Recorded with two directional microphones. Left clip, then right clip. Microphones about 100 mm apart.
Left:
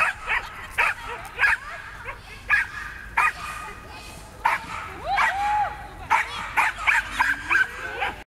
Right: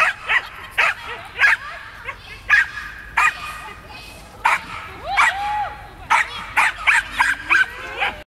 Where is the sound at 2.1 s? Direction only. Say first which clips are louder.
Right 6 dB; 45° right (ahead or behind).